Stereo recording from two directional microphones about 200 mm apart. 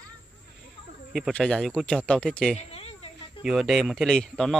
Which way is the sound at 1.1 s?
Centre (ahead or behind).